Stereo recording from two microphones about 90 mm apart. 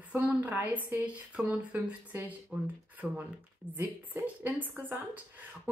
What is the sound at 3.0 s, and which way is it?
Speech, centre (ahead or behind).